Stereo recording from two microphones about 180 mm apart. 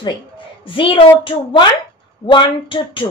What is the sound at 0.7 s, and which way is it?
A woman's voice, 30° left (ahead or behind).